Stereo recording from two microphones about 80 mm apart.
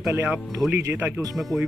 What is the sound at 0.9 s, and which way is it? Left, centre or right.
Speech, centre.